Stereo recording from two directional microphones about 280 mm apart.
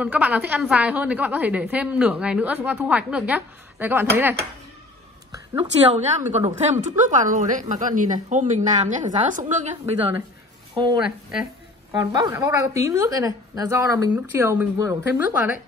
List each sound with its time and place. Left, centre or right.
0.0 s a woman's voice: centre
5.5 s a woman's voice: right